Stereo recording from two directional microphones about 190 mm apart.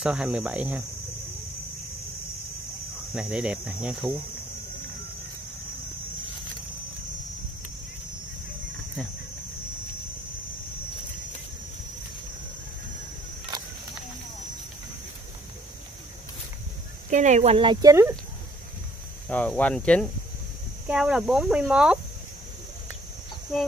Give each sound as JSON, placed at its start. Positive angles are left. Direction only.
{"t": 0.0, "sound": "speech", "side_deg": -5}
{"t": 3.2, "sound": "speech", "side_deg": -5}
{"t": 17.1, "sound": "speech", "side_deg": -40}
{"t": 19.2, "sound": "speech", "side_deg": 5}